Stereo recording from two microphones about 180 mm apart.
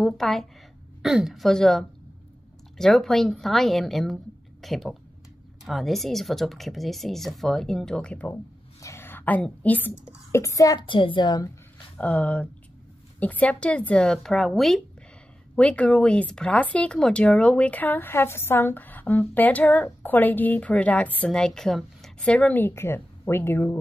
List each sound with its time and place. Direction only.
0.0 s a child's voice: centre (ahead or behind); by 11.5 s 25° left (ahead or behind)
12.0 s speech: 5° left (ahead or behind)